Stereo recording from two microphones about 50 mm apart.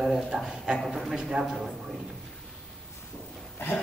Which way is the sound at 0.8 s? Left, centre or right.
Centre.